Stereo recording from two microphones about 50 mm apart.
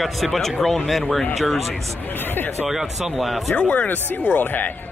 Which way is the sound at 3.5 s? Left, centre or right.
Left.